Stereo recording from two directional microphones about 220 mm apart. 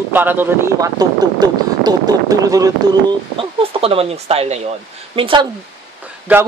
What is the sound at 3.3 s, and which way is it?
Speech, 25° right (ahead or behind).